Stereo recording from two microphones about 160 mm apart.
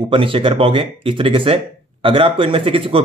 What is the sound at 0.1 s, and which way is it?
Speech, 35° right (ahead or behind).